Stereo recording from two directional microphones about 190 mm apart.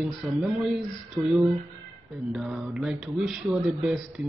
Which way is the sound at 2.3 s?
Centre (ahead or behind).